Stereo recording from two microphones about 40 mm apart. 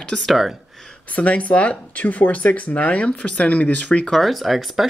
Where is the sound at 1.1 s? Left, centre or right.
Left.